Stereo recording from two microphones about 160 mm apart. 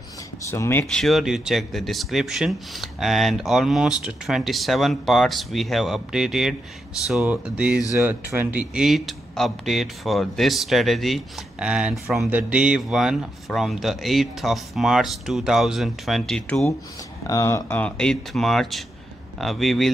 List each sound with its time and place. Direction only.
0.4 s speech: 15° left (ahead or behind)
0.9 s speech: centre (ahead or behind)
17.3 s speech: 20° left (ahead or behind); by 19.9 s centre (ahead or behind)